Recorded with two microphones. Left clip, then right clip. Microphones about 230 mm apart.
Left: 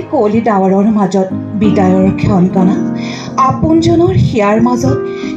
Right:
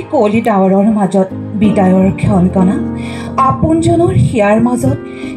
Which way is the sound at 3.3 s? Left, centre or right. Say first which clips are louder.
Left 1 dB; centre.